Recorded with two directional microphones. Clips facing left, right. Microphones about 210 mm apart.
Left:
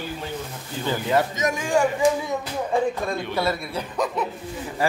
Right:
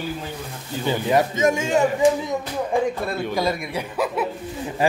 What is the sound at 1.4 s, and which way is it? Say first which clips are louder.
A man's voice: right 3 dB; 25° right (ahead or behind).